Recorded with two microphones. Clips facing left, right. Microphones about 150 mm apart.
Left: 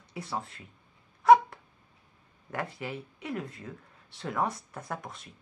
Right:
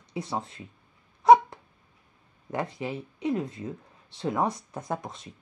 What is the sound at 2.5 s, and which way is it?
Speech, 20° right (ahead or behind).